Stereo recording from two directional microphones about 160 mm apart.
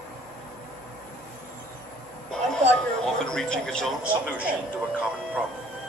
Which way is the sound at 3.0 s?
5° left (ahead or behind).